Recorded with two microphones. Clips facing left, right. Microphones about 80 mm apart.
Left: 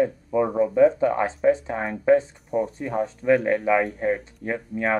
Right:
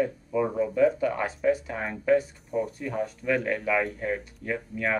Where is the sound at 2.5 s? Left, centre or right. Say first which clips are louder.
Left 5 dB; left.